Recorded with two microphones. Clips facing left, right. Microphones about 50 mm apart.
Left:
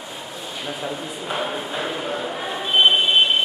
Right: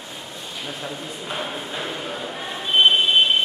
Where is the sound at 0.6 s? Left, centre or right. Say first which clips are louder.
Left 3 dB; centre.